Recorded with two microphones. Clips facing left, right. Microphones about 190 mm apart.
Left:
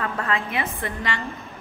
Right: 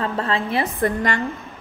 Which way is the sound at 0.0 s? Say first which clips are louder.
Right 3 dB; 30° right (ahead or behind).